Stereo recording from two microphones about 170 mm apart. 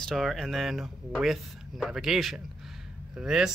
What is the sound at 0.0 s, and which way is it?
Speech, centre (ahead or behind).